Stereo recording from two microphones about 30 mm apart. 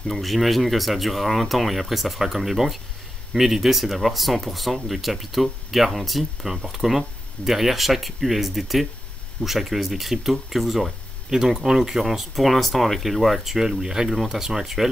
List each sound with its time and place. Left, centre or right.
0.1 s speech: centre
11.2 s speech: centre
13.6 s speech: centre